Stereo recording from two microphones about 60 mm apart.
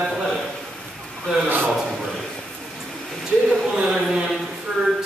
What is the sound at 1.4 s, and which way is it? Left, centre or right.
Speech, right.